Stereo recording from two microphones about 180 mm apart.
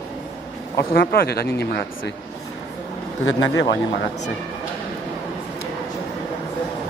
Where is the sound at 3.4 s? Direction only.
80° left.